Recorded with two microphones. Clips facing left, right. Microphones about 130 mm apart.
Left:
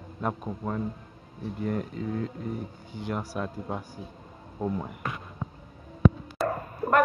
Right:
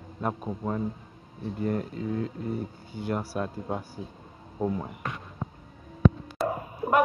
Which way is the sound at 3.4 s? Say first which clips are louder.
Right 2 dB; 30° right (ahead or behind).